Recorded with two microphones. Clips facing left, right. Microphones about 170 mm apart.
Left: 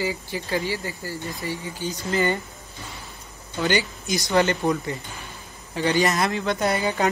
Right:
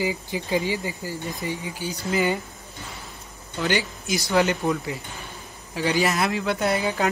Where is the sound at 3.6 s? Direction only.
Centre (ahead or behind).